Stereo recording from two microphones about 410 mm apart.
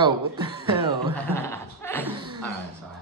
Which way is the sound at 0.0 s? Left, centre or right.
Centre.